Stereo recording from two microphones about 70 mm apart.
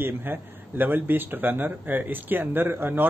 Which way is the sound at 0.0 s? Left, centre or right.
Right.